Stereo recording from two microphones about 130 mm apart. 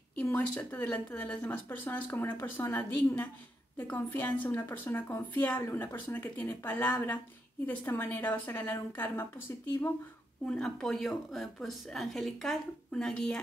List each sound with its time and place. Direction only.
0.2 s speech: 15° left (ahead or behind)
3.7 s speech: 15° left (ahead or behind)
10.4 s speech: 5° left (ahead or behind)